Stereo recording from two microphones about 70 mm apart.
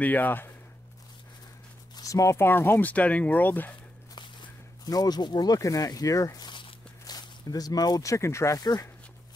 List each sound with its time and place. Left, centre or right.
0.0 s speech: left
2.0 s speech: left
4.8 s speech: left
7.1 s speech: left
8.1 s speech: left